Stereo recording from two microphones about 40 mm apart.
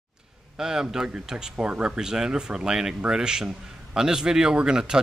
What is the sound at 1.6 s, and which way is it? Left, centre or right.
Speech, right.